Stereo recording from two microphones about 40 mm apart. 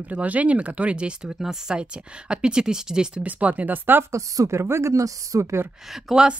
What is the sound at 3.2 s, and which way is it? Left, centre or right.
Speech, right.